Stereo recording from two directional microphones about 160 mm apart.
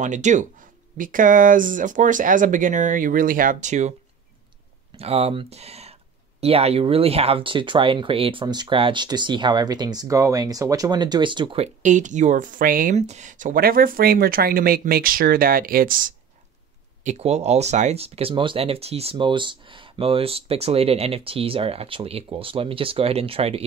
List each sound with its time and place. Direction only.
0.0 s speech: 50° right (ahead or behind)
4.9 s speech: 40° right (ahead or behind)
11.6 s speech: 50° right (ahead or behind)
12.9 s speech: 45° right (ahead or behind); by 16.2 s 60° right (ahead or behind)
17.0 s speech: 45° right (ahead or behind)